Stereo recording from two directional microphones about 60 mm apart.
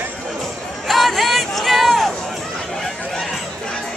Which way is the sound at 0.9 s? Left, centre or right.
Centre.